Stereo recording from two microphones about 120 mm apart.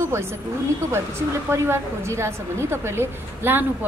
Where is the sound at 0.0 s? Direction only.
20° right (ahead or behind).